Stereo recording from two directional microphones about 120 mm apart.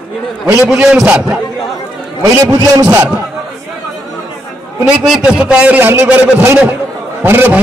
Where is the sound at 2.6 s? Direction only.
30° right (ahead or behind).